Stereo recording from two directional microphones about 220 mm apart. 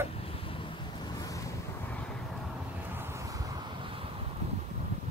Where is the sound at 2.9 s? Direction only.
10° right (ahead or behind).